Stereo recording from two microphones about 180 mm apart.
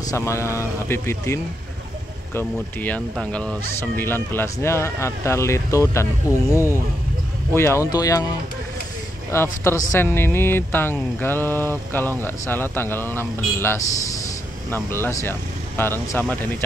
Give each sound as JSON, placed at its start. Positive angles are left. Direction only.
{"t": 0.0, "sound": "speech", "side_deg": 15}
{"t": 9.3, "sound": "speech", "side_deg": 15}